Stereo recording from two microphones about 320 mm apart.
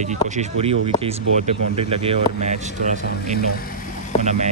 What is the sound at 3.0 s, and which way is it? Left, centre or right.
Speech, left.